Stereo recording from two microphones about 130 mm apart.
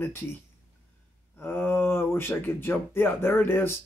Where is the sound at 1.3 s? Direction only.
15° left (ahead or behind).